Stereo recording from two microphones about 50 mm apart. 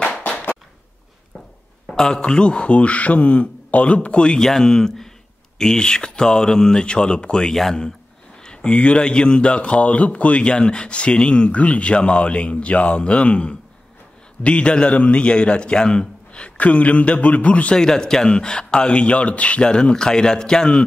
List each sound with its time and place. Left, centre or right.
1.9 s a man's voice: centre
2.1 s speech: left
4.4 s speech: centre
8.4 s a sound: centre
8.7 s speech: left
17.7 s speech: centre